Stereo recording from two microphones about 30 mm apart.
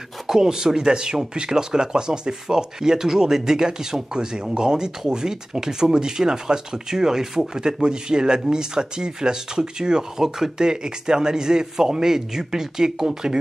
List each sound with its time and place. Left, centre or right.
0.3 s speech: right